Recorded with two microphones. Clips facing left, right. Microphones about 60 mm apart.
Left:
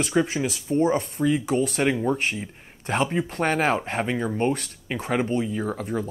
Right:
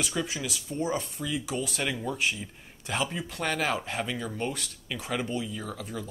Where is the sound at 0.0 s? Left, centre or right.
Left.